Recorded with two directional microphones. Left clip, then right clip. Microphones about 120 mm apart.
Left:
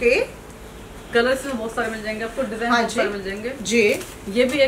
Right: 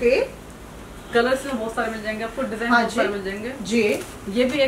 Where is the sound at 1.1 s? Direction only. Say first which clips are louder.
Left 1 dB; 5° right (ahead or behind).